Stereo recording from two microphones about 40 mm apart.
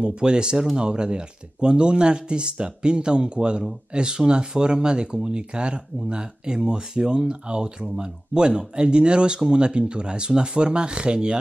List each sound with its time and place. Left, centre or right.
0.0 s speech: right